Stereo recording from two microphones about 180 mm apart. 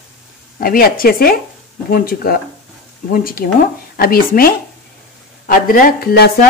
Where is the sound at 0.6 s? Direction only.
55° left (ahead or behind).